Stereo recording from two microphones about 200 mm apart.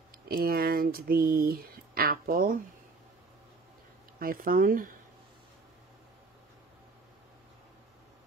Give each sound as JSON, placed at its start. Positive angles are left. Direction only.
{"t": 0.3, "sound": "speech", "side_deg": -50}
{"t": 4.2, "sound": "speech", "side_deg": -45}